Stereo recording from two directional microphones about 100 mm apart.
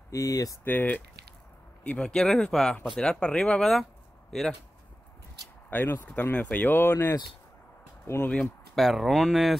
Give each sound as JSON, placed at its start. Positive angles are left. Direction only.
{"t": 0.1, "sound": "speech", "side_deg": 35}
{"t": 0.7, "sound": "speech", "side_deg": 20}
{"t": 1.9, "sound": "speech", "side_deg": 10}
{"t": 5.7, "sound": "speech", "side_deg": 20}
{"t": 8.7, "sound": "speech", "side_deg": 0}